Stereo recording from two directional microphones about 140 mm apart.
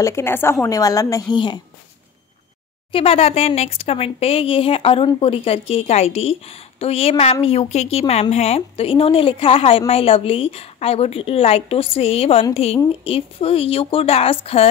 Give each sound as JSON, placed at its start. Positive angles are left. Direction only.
{"t": 0.0, "sound": "a woman's voice", "side_deg": 20}
{"t": 2.9, "sound": "a woman's voice", "side_deg": 40}